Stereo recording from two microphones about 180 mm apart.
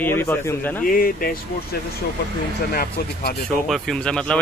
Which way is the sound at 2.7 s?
60° left (ahead or behind).